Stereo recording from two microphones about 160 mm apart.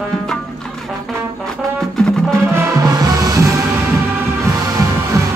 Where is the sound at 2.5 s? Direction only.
20° right (ahead or behind).